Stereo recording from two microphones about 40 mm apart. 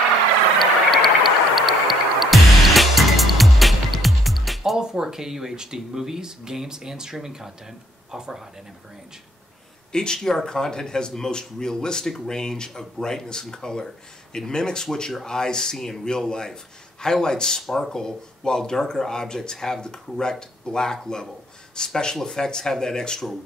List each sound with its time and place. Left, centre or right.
0.6 s music: centre
4.7 s speech: centre
9.9 s speech: centre